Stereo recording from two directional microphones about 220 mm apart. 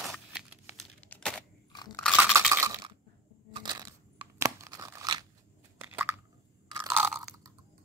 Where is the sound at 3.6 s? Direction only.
20° right (ahead or behind).